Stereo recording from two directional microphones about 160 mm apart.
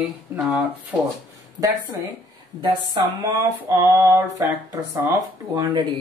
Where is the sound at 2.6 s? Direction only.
30° right (ahead or behind).